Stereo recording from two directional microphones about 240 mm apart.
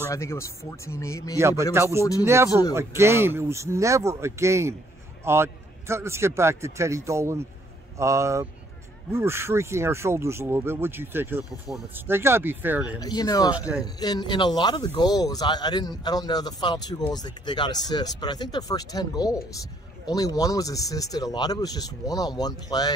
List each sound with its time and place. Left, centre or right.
0.1 s speech: centre
1.4 s speech: centre
13.0 s speech: centre